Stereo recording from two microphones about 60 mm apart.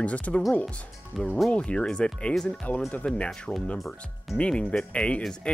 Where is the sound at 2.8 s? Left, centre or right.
Left.